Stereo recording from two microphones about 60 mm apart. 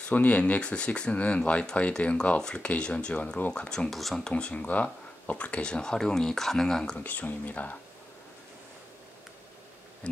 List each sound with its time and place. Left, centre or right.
0.0 s speech: left
3.5 s speech: centre
4.3 s speech: left
7.0 s speech: left